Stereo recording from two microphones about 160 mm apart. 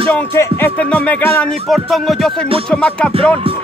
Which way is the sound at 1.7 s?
Centre (ahead or behind).